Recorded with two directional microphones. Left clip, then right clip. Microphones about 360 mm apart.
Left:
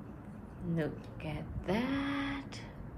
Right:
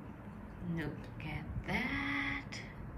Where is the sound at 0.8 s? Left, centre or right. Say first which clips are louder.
Left 6 dB; centre.